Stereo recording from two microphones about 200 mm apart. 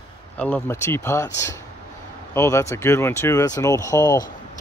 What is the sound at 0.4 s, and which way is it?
Speech, 10° left (ahead or behind).